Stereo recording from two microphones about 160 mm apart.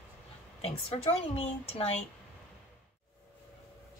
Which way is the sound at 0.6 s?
40° left (ahead or behind).